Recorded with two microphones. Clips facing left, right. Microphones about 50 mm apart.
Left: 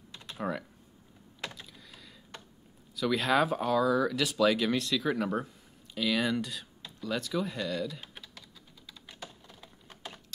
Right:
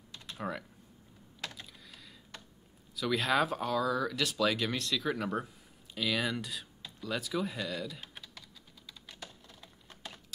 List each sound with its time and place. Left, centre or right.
0.1 s typing: centre
3.0 s speech: centre
5.9 s a sound: centre
9.0 s computer keyboard: centre
9.8 s typing: centre